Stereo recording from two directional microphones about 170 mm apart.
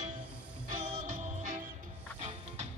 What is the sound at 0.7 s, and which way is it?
Music, 45° right (ahead or behind).